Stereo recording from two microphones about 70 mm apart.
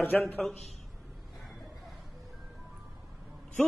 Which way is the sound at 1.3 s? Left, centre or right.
Centre.